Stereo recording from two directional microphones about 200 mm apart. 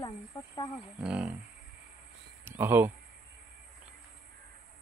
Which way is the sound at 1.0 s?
5° right (ahead or behind).